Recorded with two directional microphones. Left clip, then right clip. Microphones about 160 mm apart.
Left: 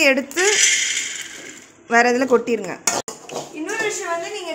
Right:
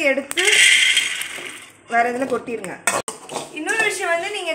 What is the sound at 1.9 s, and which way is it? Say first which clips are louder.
Speech: left 4 dB; 75° left (ahead or behind).